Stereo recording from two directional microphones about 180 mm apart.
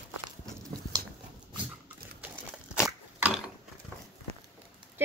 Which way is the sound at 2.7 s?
5° right (ahead or behind).